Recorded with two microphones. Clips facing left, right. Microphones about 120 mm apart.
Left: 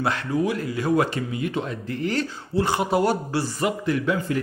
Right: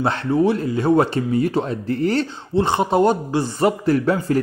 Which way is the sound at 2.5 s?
25° right (ahead or behind).